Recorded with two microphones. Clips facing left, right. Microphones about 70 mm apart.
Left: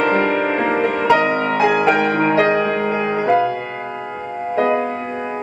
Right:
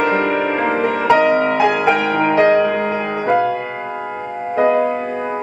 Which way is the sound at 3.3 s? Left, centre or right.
Centre.